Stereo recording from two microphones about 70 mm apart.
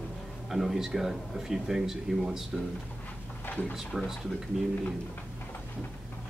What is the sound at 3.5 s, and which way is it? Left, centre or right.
Speech, left.